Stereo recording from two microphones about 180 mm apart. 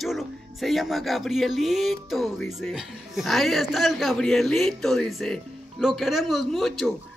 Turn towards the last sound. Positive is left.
turn(degrees=0)  # may be behind; listen again after turning